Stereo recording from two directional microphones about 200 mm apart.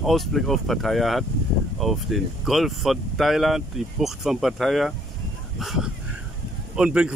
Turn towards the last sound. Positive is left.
turn(degrees=-5)  # may be behind; listen again after turning